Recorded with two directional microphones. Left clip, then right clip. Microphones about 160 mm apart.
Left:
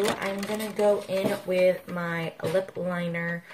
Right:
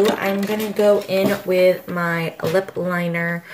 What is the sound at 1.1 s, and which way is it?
Speech, 10° right (ahead or behind).